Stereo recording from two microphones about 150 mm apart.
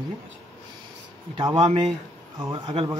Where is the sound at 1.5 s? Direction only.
45° right (ahead or behind).